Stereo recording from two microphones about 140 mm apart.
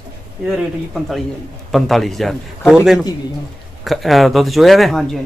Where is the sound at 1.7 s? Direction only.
Centre (ahead or behind).